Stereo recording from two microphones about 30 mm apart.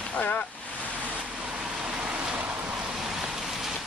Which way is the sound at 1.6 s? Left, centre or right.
Right.